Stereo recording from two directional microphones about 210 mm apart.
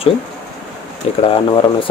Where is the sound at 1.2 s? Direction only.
25° left (ahead or behind).